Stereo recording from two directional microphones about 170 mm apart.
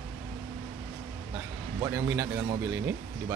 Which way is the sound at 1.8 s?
15° right (ahead or behind).